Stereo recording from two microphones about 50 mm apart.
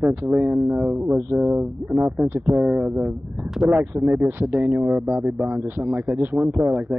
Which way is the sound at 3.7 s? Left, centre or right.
Right.